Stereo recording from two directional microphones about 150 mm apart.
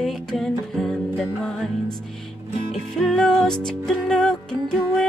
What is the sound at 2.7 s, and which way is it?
Music, centre (ahead or behind).